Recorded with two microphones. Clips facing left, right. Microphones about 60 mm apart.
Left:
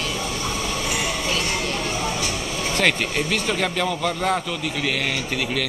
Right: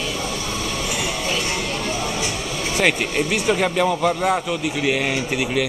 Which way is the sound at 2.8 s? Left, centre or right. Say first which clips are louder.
Right 2 dB; centre.